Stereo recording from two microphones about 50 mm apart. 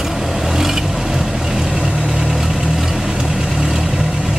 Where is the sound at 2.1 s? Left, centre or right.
Centre.